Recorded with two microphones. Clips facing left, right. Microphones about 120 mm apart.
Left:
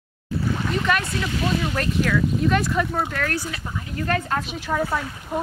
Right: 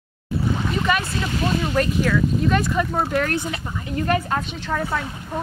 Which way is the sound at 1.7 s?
Centre (ahead or behind).